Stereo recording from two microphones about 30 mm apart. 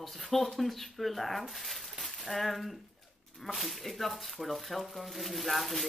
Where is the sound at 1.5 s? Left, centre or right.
Centre.